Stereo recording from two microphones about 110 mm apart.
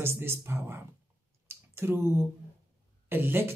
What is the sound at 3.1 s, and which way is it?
Speech, 20° right (ahead or behind).